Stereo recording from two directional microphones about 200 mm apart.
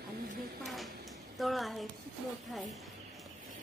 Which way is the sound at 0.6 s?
Centre (ahead or behind).